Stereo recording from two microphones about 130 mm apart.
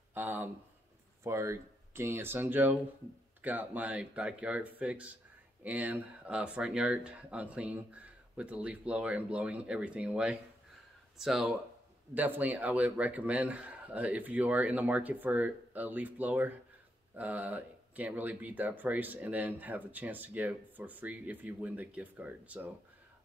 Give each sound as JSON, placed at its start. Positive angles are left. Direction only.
{"t": 0.1, "sound": "speech", "side_deg": -15}
{"t": 12.1, "sound": "speech", "side_deg": -10}